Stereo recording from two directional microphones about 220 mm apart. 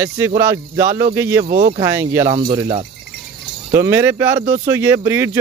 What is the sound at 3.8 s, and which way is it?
Speech, 10° right (ahead or behind).